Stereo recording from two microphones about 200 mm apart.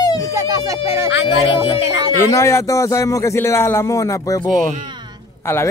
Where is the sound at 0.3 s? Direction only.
15° right (ahead or behind).